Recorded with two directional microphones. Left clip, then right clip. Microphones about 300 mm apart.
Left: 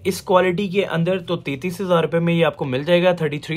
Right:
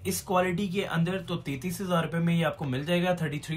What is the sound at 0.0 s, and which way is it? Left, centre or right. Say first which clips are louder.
Speech: left 10 dB; centre.